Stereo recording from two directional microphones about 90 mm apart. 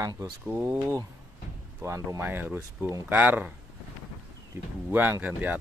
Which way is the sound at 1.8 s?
30° right (ahead or behind).